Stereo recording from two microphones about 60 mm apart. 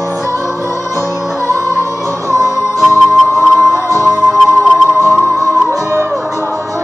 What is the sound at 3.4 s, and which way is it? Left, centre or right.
Music, right.